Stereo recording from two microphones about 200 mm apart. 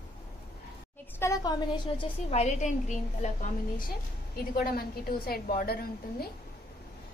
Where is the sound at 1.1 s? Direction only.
15° left (ahead or behind); by 6.2 s 50° left (ahead or behind).